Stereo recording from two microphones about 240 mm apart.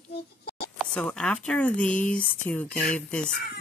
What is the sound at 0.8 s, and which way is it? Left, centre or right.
Speech, centre.